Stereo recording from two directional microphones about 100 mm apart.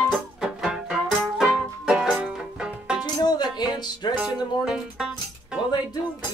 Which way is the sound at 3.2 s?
40° left (ahead or behind).